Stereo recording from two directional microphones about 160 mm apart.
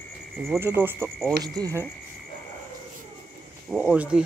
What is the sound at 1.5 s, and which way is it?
Speech, 20° right (ahead or behind).